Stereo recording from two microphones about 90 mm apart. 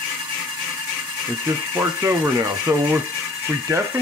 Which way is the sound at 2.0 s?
30° right (ahead or behind).